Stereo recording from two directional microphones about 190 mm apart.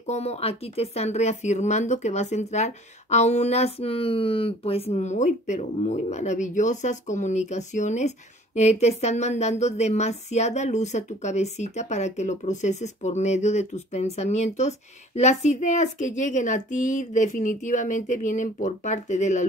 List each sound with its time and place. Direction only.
0.0 s speech: 35° left (ahead or behind)